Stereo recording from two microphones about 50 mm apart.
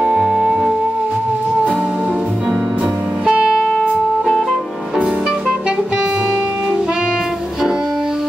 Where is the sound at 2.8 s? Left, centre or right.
Right.